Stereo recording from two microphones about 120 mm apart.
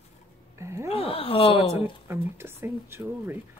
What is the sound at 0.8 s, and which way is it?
Speech, 50° left (ahead or behind).